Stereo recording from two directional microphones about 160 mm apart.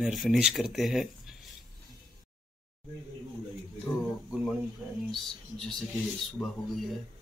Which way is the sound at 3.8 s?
Centre (ahead or behind).